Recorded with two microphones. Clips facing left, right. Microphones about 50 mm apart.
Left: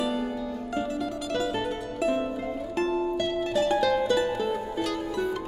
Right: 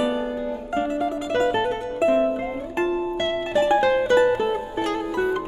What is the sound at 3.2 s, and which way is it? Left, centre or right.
Music, right.